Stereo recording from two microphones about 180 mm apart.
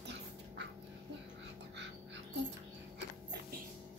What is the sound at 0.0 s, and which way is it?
Dog, 75° right (ahead or behind).